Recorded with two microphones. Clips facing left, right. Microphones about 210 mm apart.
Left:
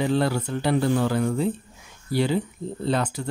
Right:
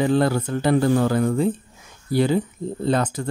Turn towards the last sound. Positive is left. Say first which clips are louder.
# right 3 dB
turn(degrees=-50)  # may be behind; listen again after turning